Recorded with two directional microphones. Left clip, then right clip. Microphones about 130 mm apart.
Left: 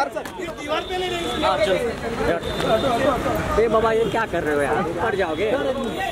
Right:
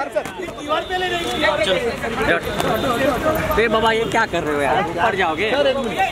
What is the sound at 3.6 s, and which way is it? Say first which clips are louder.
Speech: even; 40° right (ahead or behind).